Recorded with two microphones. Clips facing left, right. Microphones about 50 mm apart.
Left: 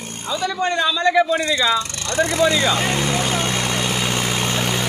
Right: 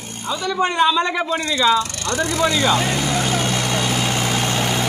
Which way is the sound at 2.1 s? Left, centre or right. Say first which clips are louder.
Left 2 dB; left.